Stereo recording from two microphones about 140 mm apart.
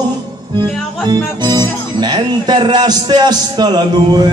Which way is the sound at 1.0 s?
30° right (ahead or behind).